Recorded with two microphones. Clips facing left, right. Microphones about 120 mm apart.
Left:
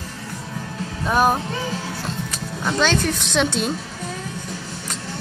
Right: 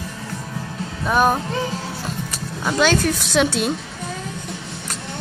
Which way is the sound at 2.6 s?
10° right (ahead or behind).